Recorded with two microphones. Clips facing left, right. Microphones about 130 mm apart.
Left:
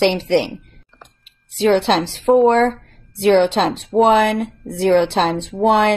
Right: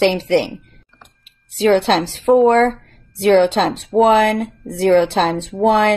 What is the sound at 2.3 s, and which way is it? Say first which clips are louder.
Speech: right 1 dB; centre (ahead or behind).